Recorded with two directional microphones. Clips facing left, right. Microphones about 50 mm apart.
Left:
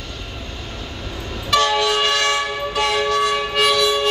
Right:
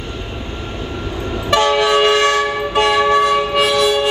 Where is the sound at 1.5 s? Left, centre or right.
Right.